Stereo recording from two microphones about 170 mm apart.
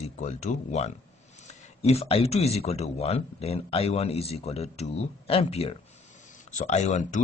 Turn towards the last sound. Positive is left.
turn(degrees=45)  # may be behind; listen again after turning